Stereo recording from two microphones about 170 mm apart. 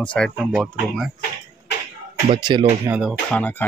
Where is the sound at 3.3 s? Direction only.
10° left (ahead or behind).